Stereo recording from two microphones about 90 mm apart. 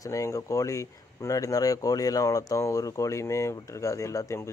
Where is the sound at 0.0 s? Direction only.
35° left (ahead or behind).